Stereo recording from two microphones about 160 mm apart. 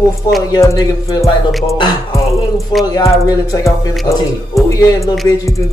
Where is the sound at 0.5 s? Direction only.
20° left (ahead or behind).